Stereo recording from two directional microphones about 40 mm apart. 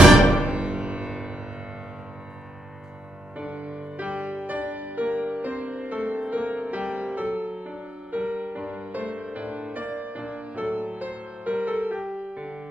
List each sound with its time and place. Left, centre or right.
0.0 s music: centre
0.5 s music: right
1.0 s music: centre
3.3 s music: right